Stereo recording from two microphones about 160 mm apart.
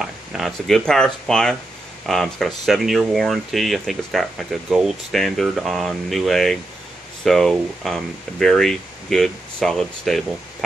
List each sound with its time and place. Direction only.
0.0 s speech: centre (ahead or behind)